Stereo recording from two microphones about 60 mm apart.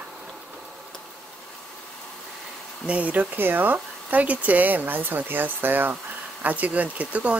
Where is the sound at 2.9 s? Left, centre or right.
Right.